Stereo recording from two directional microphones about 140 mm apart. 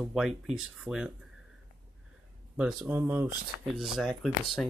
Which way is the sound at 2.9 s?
15° right (ahead or behind).